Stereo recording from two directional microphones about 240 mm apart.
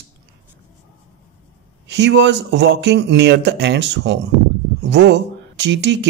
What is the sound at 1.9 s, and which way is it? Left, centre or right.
Speech, right.